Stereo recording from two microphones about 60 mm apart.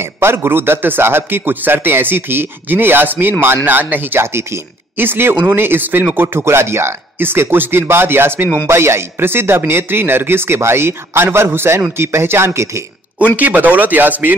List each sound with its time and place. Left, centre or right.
0.0 s a man's voice: right
13.4 s speech: right